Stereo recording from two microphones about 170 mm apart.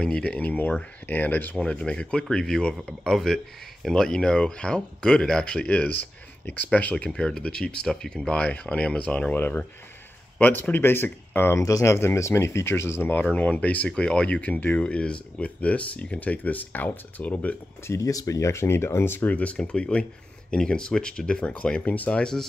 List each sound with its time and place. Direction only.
0.0 s speech: 5° left (ahead or behind)